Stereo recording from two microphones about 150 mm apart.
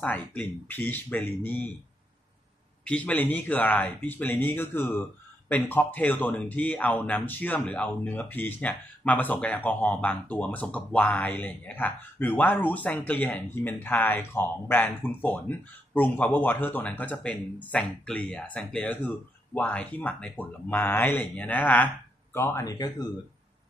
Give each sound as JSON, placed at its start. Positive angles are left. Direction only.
{"t": 0.0, "sound": "a man's voice", "side_deg": 10}
{"t": 2.8, "sound": "a man's voice", "side_deg": 10}